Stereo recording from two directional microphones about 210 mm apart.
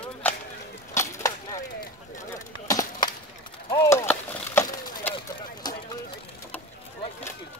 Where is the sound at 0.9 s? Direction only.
15° left (ahead or behind).